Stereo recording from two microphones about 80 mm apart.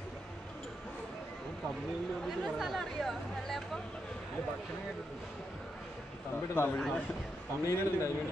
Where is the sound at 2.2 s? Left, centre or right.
Centre.